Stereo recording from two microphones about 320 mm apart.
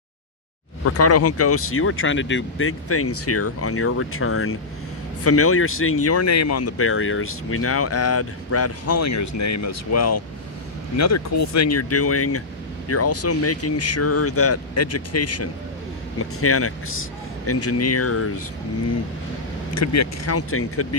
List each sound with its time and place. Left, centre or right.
0.8 s speech: left
19.7 s speech: left